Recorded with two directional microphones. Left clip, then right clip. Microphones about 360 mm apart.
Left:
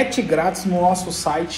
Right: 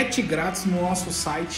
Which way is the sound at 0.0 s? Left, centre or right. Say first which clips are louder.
Left 6 dB; centre.